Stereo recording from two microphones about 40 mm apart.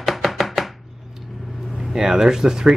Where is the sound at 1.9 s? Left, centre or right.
Centre.